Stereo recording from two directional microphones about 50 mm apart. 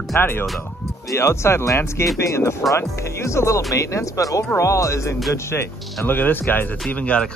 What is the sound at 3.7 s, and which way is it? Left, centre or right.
Speech, left.